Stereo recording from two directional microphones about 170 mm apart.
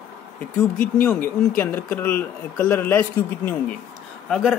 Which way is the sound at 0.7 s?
55° left (ahead or behind).